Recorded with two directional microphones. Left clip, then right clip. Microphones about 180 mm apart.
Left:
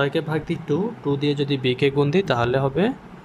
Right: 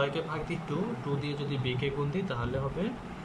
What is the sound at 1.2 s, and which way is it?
Speech, 65° left (ahead or behind).